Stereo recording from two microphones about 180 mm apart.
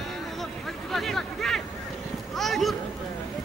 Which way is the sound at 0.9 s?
Centre (ahead or behind).